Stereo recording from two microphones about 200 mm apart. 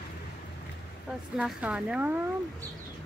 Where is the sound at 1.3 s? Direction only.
5° right (ahead or behind).